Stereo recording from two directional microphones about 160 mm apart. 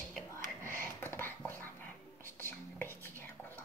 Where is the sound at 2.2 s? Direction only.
15° left (ahead or behind).